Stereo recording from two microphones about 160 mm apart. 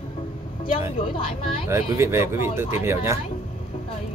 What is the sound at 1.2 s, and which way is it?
Speech, 35° left (ahead or behind).